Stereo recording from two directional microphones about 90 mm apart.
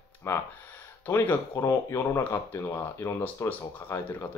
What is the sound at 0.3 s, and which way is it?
Speech, 30° left (ahead or behind).